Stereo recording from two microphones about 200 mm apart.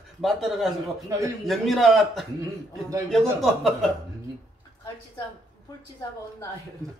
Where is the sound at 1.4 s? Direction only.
Centre (ahead or behind).